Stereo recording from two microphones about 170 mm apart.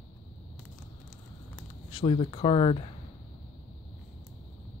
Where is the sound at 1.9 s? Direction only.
30° left (ahead or behind).